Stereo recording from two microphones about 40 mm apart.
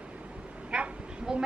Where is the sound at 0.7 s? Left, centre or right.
Right.